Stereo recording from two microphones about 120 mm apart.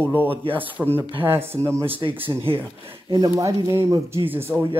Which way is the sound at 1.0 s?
45° right (ahead or behind).